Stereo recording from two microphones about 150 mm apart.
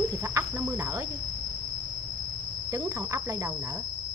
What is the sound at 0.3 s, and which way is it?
Cricket, 20° right (ahead or behind).